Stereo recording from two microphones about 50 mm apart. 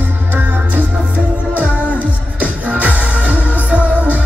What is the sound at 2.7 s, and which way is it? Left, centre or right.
Music, right.